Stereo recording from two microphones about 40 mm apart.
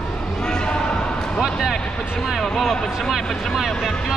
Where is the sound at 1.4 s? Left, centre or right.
Centre.